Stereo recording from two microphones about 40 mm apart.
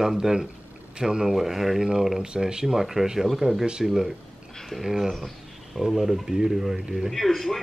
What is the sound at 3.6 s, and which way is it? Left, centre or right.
Speech, right.